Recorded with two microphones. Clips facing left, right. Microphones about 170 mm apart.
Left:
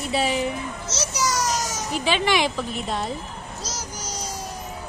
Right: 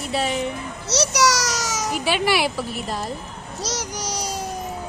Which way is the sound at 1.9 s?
10° right (ahead or behind).